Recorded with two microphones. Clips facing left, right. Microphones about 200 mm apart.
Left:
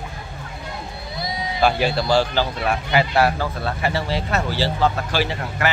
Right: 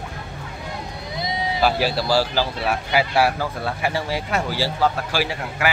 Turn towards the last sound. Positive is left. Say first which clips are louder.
# left 1 dB
turn(degrees=-10)  # may be behind; listen again after turning